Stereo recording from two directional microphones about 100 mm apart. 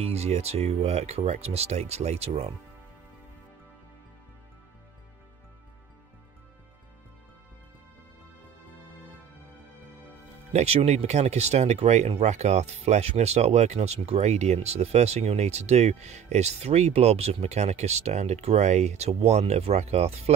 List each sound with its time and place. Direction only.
0.0 s speech: 90° right
10.5 s speech: 90° right